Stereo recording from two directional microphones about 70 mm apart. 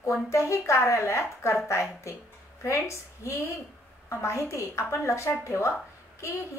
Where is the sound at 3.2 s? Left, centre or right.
Left.